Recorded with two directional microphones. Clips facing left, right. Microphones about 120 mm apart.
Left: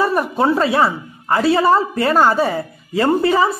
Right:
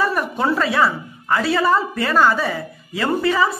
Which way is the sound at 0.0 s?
30° left (ahead or behind).